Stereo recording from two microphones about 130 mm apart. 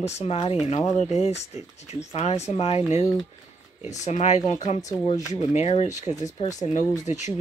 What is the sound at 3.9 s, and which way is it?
Speech, 60° left (ahead or behind).